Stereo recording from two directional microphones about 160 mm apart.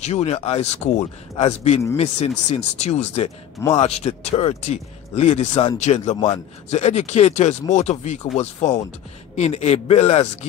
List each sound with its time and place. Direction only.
0.0 s speech: 40° left (ahead or behind)